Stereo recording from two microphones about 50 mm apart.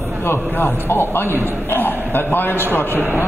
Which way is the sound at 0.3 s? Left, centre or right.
Left.